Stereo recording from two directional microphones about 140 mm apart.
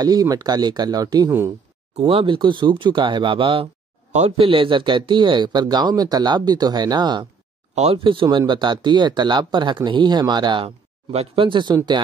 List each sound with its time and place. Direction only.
0.0 s speech: 25° right (ahead or behind)
2.0 s speech: 45° right (ahead or behind)
7.7 s speech: 50° right (ahead or behind)
8.0 s speech: 35° right (ahead or behind)